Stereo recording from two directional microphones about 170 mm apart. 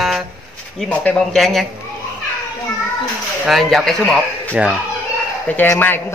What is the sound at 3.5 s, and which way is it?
Speech, centre (ahead or behind).